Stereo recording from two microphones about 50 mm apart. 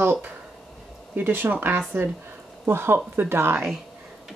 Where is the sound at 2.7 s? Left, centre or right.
Right.